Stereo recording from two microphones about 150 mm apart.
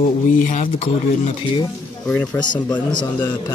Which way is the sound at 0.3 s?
60° left (ahead or behind).